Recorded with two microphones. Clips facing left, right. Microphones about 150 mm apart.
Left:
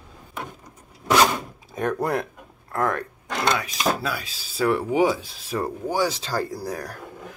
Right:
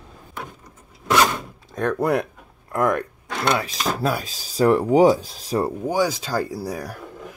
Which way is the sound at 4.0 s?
45° right (ahead or behind).